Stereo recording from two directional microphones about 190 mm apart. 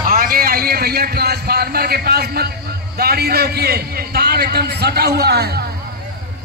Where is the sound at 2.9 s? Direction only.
55° right (ahead or behind).